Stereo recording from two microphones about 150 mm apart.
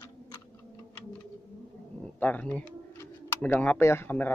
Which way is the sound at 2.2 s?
10° left (ahead or behind).